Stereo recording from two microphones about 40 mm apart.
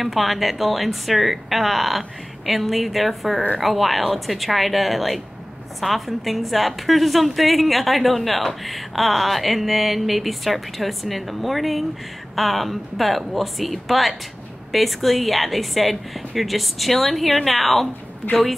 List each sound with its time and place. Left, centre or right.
0.0 s speech: centre
18.2 s a woman's voice: left